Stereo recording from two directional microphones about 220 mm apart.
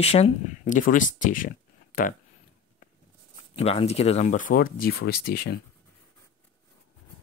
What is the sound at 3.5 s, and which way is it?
Speech, 25° left (ahead or behind).